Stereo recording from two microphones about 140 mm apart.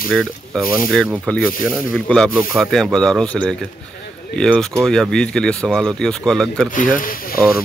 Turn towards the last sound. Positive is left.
turn(degrees=85)